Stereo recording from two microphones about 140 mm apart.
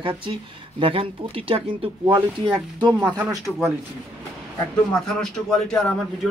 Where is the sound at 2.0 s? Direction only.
30° right (ahead or behind).